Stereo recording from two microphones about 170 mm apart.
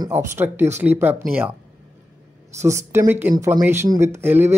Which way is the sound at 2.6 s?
15° right (ahead or behind).